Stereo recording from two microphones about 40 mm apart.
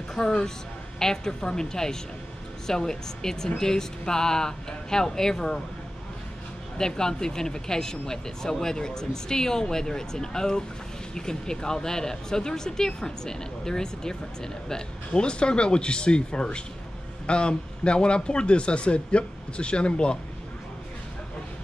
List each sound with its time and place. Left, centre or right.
0.2 s speech: centre
0.9 s speech: centre
6.8 s speech: centre